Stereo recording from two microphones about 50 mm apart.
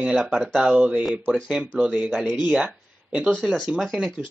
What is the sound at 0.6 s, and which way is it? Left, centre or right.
Speech, right.